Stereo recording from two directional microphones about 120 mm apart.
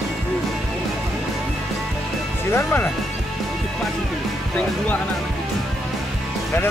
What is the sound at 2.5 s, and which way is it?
Speech, 20° left (ahead or behind).